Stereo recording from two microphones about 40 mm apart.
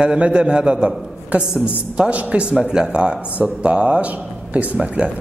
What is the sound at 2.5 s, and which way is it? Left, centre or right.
A man's voice, centre.